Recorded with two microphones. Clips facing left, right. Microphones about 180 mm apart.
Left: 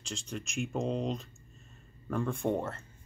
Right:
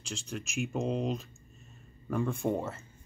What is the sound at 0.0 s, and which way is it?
Speech, 5° right (ahead or behind).